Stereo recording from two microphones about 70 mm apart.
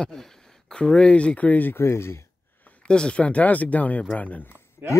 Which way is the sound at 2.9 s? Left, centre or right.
Centre.